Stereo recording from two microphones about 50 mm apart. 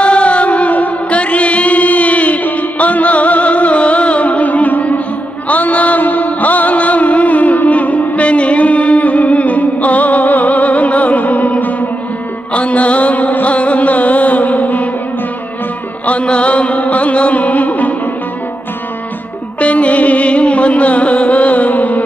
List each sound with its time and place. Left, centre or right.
0.0 s music: left
16.1 s music: left
19.6 s music: left